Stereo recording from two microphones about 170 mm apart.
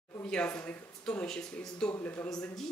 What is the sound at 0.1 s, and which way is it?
Speech, 10° left (ahead or behind).